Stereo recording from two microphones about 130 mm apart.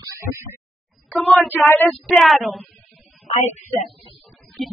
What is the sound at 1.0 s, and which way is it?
Child singing, centre (ahead or behind).